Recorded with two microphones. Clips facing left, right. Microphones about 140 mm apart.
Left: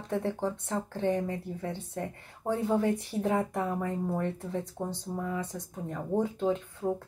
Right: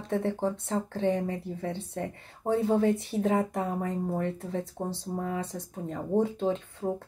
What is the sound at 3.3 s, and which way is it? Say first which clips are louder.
Speech: right 1 dB; 20° right (ahead or behind).